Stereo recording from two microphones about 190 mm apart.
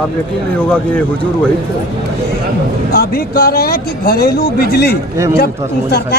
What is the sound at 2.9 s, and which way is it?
Speech, 50° left (ahead or behind).